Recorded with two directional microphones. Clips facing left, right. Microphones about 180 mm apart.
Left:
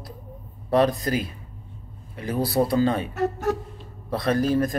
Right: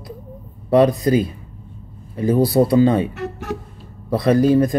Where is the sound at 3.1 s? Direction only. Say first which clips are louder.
Left 4 dB; 40° left (ahead or behind).